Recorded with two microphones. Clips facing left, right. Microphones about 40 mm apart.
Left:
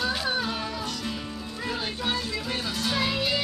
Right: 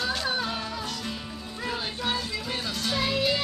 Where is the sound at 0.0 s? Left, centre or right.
Centre.